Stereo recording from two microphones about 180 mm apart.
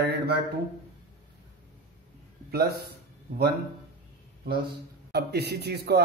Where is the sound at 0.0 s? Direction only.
65° right (ahead or behind).